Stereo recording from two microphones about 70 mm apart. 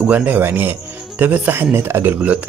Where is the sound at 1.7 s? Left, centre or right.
Right.